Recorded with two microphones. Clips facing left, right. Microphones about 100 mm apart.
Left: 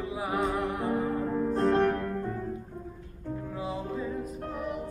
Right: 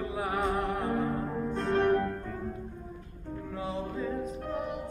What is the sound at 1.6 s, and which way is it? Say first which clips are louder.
Music: left 2 dB; 35° left (ahead or behind).